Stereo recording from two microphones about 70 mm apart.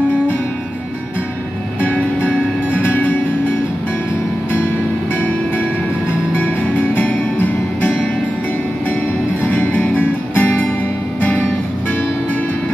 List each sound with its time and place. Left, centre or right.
1.8 s music: left
6.3 s music: left
9.5 s music: left